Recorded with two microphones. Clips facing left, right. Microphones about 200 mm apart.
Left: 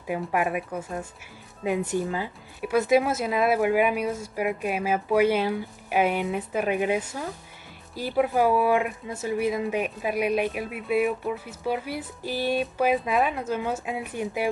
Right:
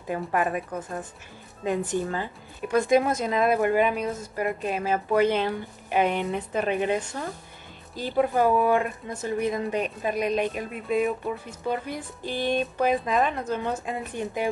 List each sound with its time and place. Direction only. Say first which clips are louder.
0.0 s speech: even; 10° left (ahead or behind)